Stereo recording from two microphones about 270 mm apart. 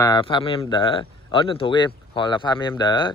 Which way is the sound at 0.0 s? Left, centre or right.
Centre.